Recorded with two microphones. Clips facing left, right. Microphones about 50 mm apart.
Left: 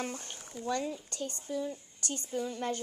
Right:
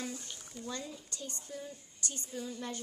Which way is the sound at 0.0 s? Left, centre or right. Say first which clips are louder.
Left 3 dB; left.